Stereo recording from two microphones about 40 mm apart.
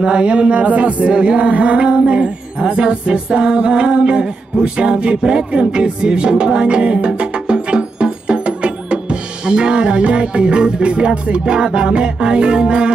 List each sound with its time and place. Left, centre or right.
0.0 s music: right